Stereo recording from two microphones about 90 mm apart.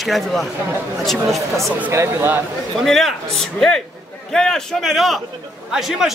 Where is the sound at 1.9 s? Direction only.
30° right (ahead or behind).